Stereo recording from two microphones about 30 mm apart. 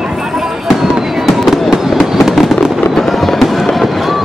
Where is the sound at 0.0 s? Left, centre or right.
Right.